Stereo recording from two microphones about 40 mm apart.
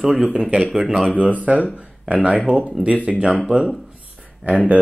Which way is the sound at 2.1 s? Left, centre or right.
Right.